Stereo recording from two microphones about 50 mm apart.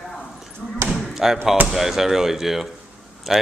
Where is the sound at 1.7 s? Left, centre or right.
Centre.